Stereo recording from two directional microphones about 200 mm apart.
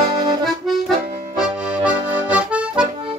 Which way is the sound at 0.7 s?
Centre (ahead or behind).